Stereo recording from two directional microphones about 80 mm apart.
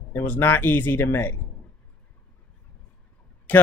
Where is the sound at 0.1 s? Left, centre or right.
Left.